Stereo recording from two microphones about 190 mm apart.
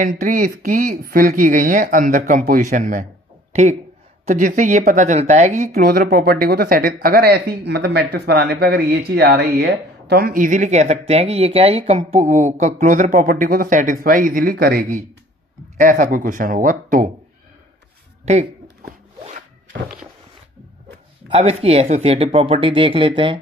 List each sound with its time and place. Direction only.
0.0 s speech: 45° right (ahead or behind)
4.3 s speech: 40° right (ahead or behind)
5.7 s speech: 50° right (ahead or behind)
18.2 s speech: 35° right (ahead or behind)
21.3 s speech: 30° right (ahead or behind)